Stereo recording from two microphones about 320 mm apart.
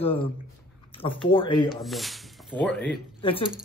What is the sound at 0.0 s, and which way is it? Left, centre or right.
A man's voice, centre.